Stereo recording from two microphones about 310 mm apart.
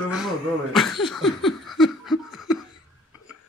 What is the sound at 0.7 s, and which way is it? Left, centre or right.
Laughter, centre.